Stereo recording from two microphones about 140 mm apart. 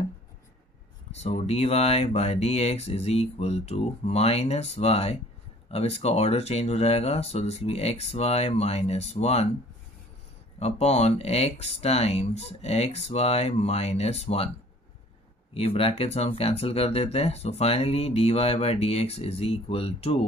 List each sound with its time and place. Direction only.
1.1 s speech: 50° left (ahead or behind)
10.6 s speech: 50° left (ahead or behind)
15.5 s speech: 45° left (ahead or behind)